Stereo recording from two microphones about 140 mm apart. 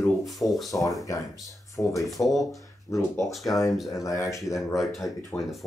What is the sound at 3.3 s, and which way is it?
Speech, centre (ahead or behind).